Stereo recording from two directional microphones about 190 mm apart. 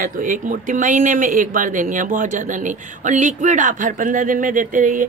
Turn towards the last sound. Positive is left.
turn(degrees=-45)  # may be behind; listen again after turning